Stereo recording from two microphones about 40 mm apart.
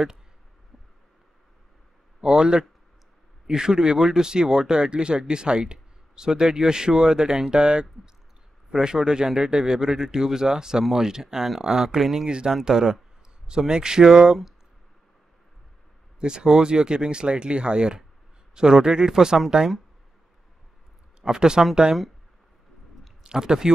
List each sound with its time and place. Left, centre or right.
2.2 s speech: centre
16.2 s speech: centre
21.2 s speech: centre
23.2 s speech: centre